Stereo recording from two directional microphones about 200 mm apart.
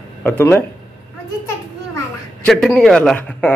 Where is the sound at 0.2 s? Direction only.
10° left (ahead or behind).